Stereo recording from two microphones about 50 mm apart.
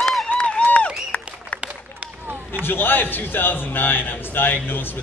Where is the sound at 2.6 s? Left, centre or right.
Left.